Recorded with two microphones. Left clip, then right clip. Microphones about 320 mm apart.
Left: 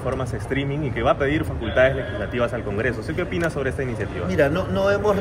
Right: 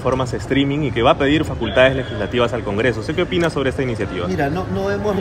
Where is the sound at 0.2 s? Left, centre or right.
Right.